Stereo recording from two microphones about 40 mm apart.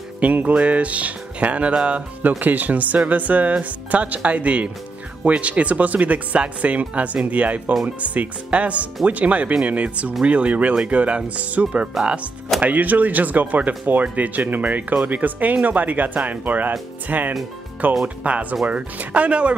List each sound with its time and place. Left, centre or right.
0.2 s speech: right
2.4 s speech: right
12.6 s speech: right